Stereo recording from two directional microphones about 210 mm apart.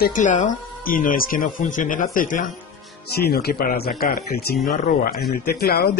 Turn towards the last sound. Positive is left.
turn(degrees=45)  # may be behind; listen again after turning